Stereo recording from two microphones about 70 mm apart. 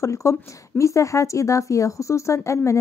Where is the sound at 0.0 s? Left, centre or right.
Left.